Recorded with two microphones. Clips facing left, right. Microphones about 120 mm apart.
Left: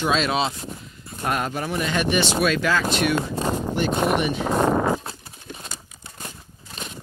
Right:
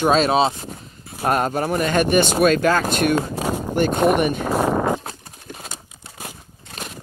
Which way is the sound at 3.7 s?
50° right (ahead or behind).